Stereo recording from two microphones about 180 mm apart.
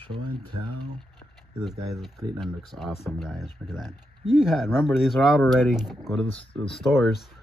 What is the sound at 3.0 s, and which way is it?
Speech, centre (ahead or behind).